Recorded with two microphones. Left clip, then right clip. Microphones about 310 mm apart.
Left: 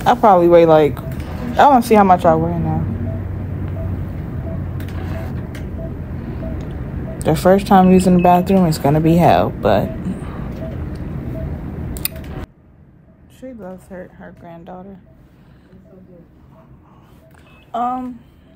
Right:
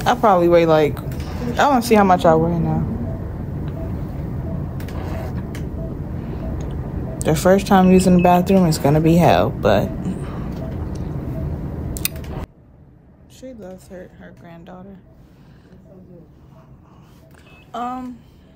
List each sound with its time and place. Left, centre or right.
0.0 s speech: centre
7.2 s speech: centre
13.5 s a sound: centre
14.4 s speech: centre
17.6 s speech: centre